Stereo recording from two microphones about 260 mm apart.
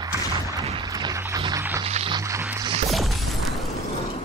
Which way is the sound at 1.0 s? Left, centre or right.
Centre.